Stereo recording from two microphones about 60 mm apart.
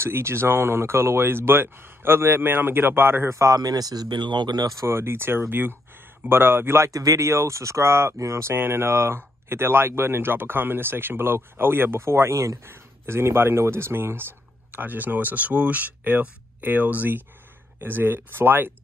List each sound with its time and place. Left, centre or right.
0.0 s speech: right
3.3 s speech: right
4.6 s speech: right
4.8 s speech: right
6.9 s speech: right
7.2 s speech: right
8.5 s speech: right
12.6 s speech: right